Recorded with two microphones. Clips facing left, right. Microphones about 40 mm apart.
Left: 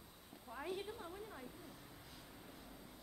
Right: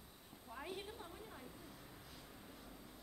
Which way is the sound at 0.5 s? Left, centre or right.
Centre.